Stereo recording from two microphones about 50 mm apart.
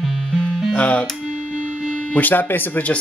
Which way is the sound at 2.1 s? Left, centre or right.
Left.